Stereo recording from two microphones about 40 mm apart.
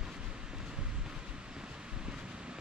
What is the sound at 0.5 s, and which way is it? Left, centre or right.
Vehicle, centre.